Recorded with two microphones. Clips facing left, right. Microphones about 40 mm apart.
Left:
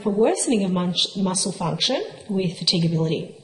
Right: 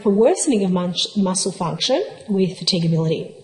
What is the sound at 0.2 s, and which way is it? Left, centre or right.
Speech, centre.